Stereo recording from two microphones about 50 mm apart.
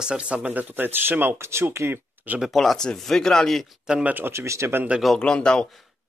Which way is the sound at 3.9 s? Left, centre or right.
Centre.